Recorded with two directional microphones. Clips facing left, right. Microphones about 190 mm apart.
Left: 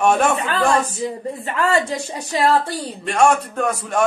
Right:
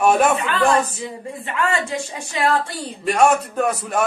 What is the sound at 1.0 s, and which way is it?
Speech, 40° left (ahead or behind).